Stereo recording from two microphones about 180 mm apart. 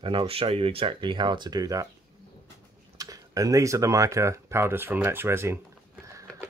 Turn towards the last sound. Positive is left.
turn(degrees=-15)  # may be behind; listen again after turning